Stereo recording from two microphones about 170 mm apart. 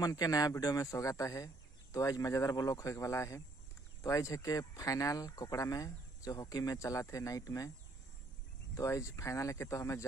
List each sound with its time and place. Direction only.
0.0 s speech: 20° left (ahead or behind)
8.7 s speech: 15° left (ahead or behind)